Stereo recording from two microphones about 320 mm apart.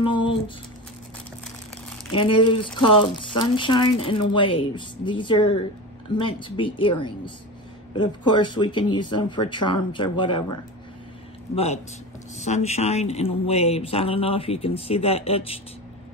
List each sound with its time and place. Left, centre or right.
0.0 s a sound: centre
2.1 s speech: centre
11.5 s speech: centre